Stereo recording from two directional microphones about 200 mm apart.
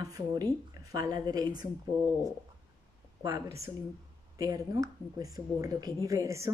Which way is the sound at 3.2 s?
15° right (ahead or behind).